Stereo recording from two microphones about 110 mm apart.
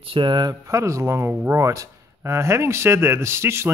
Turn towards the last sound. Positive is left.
turn(degrees=-25)  # may be behind; listen again after turning